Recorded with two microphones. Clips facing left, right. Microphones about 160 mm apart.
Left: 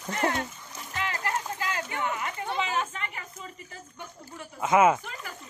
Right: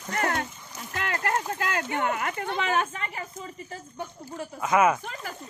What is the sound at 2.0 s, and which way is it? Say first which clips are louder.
Speech: right 3 dB; 60° right (ahead or behind).